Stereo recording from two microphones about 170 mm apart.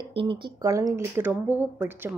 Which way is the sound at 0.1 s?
30° right (ahead or behind).